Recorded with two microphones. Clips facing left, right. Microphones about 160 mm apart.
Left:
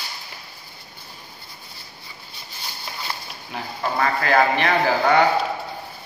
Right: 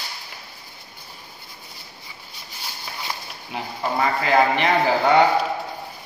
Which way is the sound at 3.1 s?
20° right (ahead or behind).